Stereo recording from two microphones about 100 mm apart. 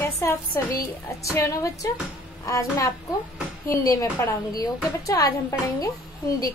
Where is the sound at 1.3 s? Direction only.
35° left (ahead or behind).